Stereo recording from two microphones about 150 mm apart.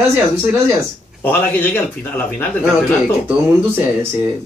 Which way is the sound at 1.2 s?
10° left (ahead or behind).